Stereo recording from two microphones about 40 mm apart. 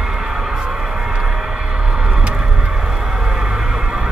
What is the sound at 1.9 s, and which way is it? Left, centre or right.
Vehicle, centre.